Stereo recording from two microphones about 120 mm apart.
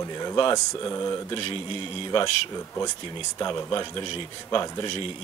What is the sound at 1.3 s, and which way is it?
Speech, 45° left (ahead or behind).